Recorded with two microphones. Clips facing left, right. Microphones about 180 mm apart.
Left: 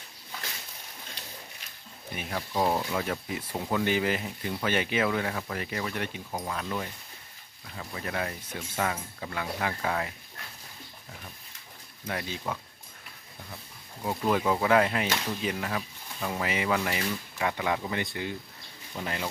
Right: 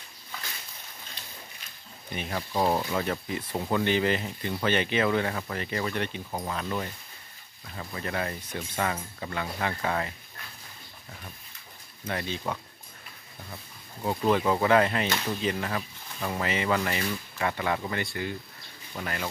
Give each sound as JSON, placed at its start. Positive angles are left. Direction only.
{"t": 2.1, "sound": "speech", "side_deg": 0}
{"t": 3.5, "sound": "speech", "side_deg": -5}
{"t": 3.8, "sound": "speech", "side_deg": 10}
{"t": 12.1, "sound": "speech", "side_deg": 5}
{"t": 14.0, "sound": "speech", "side_deg": 5}